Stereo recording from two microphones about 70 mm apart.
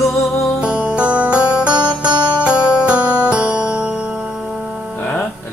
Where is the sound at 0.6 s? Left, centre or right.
Centre.